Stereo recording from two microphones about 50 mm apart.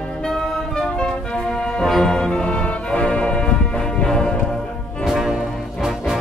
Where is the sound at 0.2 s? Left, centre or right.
Centre.